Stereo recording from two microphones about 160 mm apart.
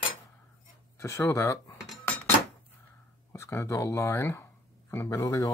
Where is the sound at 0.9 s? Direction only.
20° left (ahead or behind).